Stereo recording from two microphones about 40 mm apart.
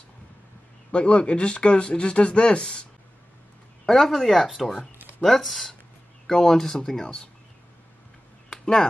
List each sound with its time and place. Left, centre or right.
0.9 s speech: left
3.8 s speech: centre
8.5 s a sound: centre